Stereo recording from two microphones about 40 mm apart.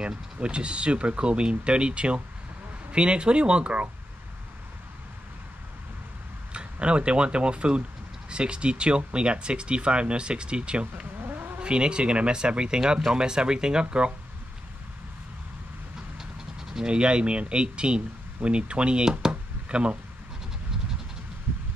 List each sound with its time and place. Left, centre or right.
0.0 s speech: right
6.5 s speech: right
16.2 s vehicle: centre
16.8 s speech: right